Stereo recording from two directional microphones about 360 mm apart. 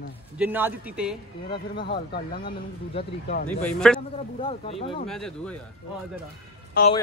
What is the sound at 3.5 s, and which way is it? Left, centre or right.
Speech, centre.